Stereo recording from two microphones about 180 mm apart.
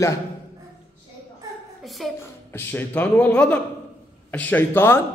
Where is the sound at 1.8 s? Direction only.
Centre (ahead or behind).